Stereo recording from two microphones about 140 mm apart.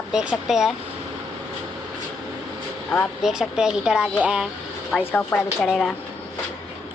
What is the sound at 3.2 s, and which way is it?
Speech, 5° right (ahead or behind).